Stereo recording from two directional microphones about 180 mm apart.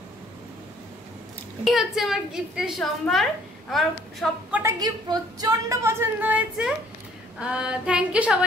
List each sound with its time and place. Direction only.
1.6 s a woman's voice: centre (ahead or behind)
4.7 s a woman's voice: 20° right (ahead or behind); by 8.5 s 5° right (ahead or behind)